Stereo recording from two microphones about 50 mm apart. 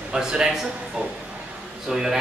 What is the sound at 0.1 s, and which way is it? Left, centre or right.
Speech, centre.